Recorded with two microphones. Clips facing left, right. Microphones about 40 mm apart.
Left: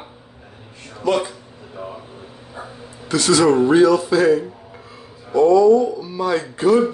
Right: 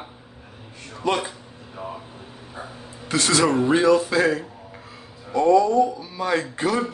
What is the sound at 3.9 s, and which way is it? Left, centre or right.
Speech, right.